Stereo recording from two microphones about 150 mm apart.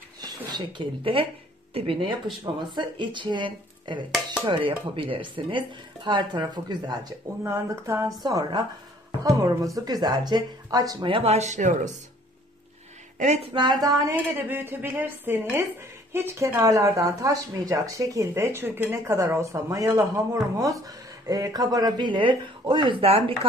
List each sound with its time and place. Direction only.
0.2 s speech: 30° right (ahead or behind); by 11.9 s 55° right (ahead or behind)
13.2 s speech: 50° right (ahead or behind)
13.5 s speech: 30° right (ahead or behind)